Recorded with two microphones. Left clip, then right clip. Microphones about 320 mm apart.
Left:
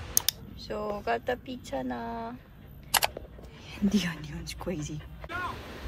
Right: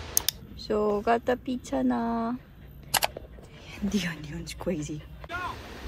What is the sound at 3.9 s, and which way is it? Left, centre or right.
Speech, centre.